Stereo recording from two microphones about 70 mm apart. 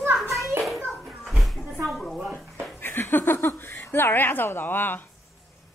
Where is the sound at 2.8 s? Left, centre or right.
Left.